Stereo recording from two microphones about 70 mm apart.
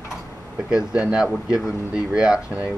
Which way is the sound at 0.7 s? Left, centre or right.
Centre.